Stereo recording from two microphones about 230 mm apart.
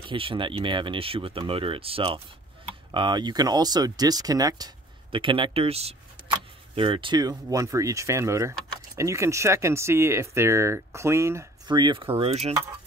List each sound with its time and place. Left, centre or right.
0.1 s speech: right